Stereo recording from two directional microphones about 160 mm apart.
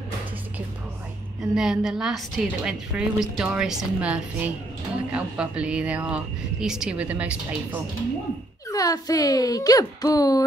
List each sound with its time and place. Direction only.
1.5 s a woman's voice: 5° right (ahead or behind)
8.6 s speech: 20° left (ahead or behind)